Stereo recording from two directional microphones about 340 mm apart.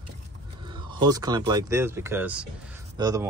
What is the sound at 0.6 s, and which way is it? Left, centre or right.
Speech, centre.